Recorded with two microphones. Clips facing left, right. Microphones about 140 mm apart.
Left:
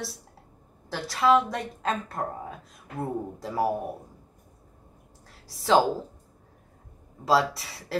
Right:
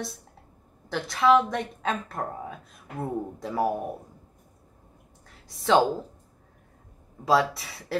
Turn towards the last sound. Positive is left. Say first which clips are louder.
# right 1 dB
turn(degrees=0)  # may be behind; listen again after turning